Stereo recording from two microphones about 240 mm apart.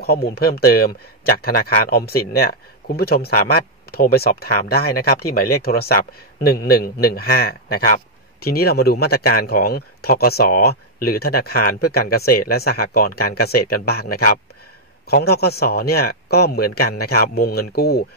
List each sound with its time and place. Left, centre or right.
0.0 s speech: left
15.0 s speech: left